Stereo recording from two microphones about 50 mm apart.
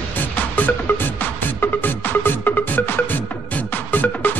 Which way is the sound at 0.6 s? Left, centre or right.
Left.